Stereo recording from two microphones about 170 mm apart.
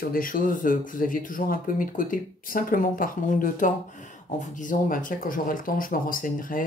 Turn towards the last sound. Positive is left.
turn(degrees=55)  # may be behind; listen again after turning